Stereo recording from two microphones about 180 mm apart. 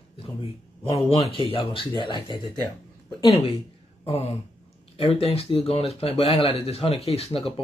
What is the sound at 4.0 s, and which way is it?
Speech, 35° left (ahead or behind).